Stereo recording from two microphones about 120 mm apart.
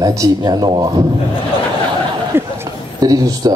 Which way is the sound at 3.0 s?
30° right (ahead or behind).